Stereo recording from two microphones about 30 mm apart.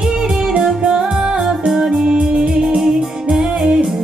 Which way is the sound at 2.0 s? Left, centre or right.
Right.